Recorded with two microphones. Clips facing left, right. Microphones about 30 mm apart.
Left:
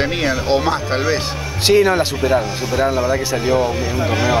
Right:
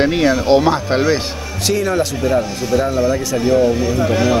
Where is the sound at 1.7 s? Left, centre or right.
Left.